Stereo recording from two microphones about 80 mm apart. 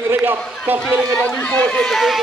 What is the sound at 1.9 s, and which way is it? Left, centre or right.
Speech, centre.